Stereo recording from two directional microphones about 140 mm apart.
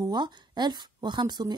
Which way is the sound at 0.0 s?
30° right (ahead or behind).